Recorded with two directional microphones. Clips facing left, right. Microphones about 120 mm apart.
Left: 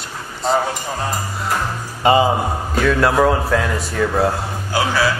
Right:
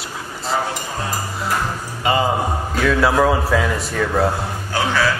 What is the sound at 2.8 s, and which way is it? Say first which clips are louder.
A man's voice: left 1 dB; centre (ahead or behind).